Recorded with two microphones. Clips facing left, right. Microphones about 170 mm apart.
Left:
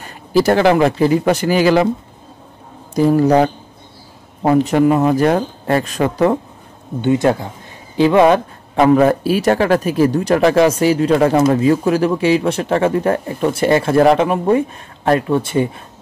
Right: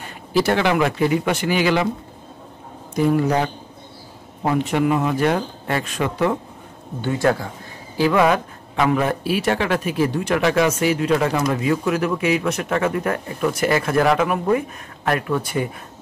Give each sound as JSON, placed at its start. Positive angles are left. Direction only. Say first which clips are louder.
{"t": 0.3, "sound": "speech", "louder": "left 6 dB", "side_deg": 40}
{"t": 2.9, "sound": "speech", "louder": "left 6 dB", "side_deg": 35}
{"t": 7.0, "sound": "speech", "louder": "left 5 dB", "side_deg": 20}